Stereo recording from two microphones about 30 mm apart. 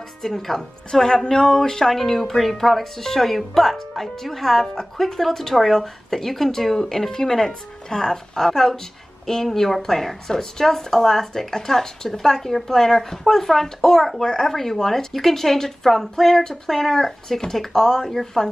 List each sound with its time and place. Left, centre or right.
0.2 s speech: centre